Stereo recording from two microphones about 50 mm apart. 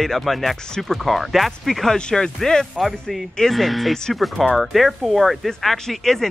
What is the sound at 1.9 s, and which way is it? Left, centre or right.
Speech, centre.